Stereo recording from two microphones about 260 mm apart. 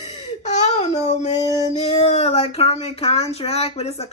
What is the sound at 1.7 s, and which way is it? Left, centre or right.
Speech, left.